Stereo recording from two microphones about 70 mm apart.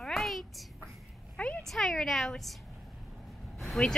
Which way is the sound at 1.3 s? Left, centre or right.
Centre.